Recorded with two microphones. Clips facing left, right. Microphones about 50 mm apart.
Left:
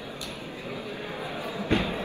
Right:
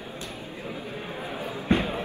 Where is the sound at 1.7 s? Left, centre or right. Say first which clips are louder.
Right 2 dB; right.